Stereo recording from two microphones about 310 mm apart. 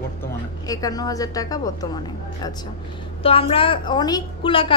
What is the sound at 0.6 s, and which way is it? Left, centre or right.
A woman's voice, centre.